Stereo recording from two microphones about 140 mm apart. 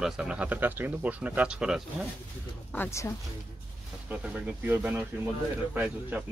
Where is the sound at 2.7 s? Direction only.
15° left (ahead or behind).